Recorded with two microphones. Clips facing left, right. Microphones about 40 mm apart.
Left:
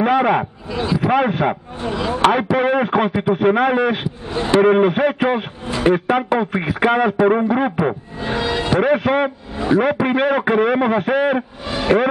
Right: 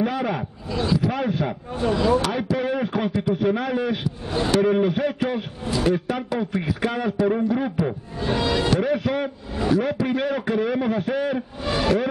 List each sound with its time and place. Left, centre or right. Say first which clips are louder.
0.0 s a man's voice: left 9 dB; left
0.7 s speech: left 2 dB; left
1.0 s a man's voice: left 7 dB; left
1.8 s speech: right 7 dB; centre
2.2 s a man's voice: left 9 dB; left
3.1 s a man's voice: left 5 dB; left
7.7 s speech: left 5 dB; left
8.7 s a man's voice: left 6 dB; left
11.6 s speech: even; centre